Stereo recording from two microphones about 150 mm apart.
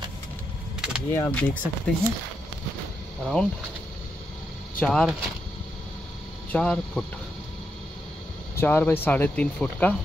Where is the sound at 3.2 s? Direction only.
5° left (ahead or behind).